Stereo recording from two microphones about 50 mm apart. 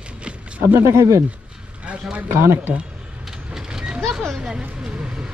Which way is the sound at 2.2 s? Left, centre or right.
Right.